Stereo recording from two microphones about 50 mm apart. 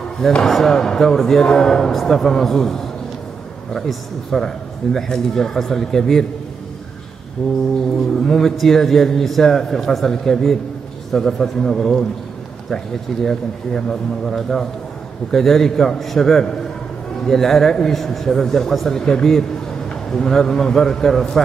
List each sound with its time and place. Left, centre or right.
0.4 s speech: centre
4.3 s speech: centre
7.4 s a sound: centre
8.3 s a man's voice: centre